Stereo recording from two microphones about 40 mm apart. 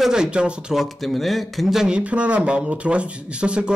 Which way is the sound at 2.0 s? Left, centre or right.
Right.